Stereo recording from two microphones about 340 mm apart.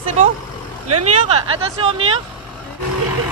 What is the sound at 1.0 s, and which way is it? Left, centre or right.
Speech, centre.